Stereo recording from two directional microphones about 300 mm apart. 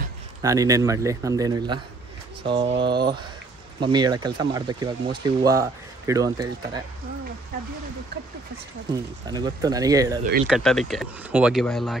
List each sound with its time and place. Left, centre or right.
0.4 s speech: centre
8.9 s speech: centre
10.4 s speech: centre